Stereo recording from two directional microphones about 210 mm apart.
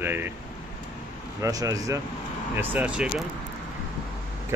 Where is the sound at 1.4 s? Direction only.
15° right (ahead or behind).